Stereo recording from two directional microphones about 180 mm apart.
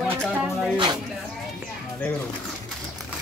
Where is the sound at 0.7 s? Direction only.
25° right (ahead or behind).